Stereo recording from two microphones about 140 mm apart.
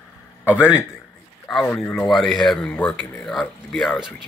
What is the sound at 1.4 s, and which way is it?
Speech, 5° left (ahead or behind).